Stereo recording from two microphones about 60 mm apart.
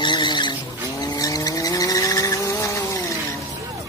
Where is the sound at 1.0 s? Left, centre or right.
Left.